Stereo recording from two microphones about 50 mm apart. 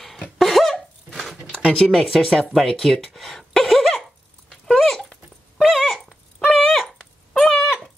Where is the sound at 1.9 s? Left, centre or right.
Centre.